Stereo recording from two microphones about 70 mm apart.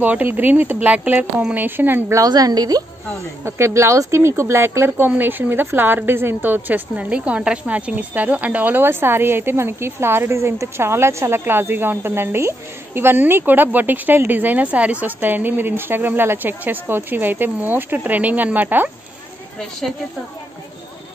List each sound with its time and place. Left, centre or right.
0.0 s a woman's voice: right
2.2 s a woman's voice: right
3.4 s a woman's voice: right